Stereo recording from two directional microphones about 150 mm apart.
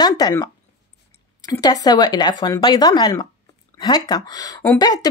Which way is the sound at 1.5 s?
25° left (ahead or behind).